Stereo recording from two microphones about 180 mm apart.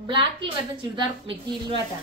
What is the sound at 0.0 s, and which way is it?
Speech, 25° right (ahead or behind).